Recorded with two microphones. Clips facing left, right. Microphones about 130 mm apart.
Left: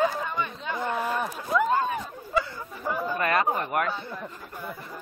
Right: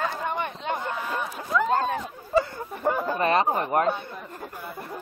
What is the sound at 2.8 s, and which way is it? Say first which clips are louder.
Speech: right 4 dB; 60° right (ahead or behind).